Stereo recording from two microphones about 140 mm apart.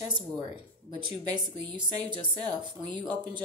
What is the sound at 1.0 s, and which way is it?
Speech, 35° right (ahead or behind).